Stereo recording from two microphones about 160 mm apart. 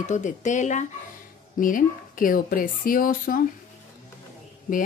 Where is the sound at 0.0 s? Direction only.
50° left (ahead or behind).